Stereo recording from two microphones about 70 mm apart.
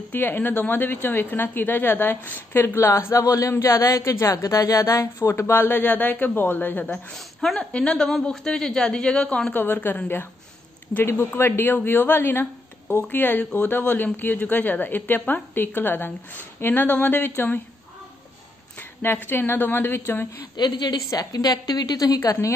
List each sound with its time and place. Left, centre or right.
0.1 s a woman's voice: left
7.1 s a woman's voice: centre
9.5 s a woman's voice: left
11.3 s a woman's voice: left
18.8 s a woman's voice: left
20.5 s a woman's voice: left
21.1 s a woman's voice: left